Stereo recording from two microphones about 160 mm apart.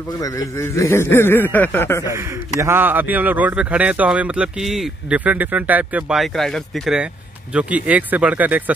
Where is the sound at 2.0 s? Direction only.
20° right (ahead or behind).